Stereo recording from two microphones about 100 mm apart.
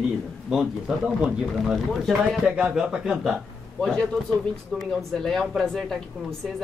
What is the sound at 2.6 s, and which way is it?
Speech, 5° right (ahead or behind).